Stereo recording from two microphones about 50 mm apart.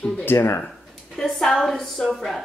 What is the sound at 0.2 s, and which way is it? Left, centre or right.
Speech, left.